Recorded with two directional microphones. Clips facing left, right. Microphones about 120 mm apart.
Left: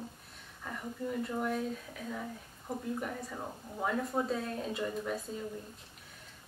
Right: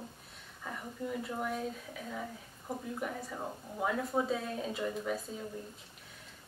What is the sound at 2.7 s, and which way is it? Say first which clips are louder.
A woman's voice: left 1 dB; centre (ahead or behind).